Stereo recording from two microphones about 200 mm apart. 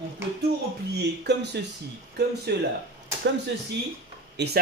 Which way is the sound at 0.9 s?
55° right (ahead or behind).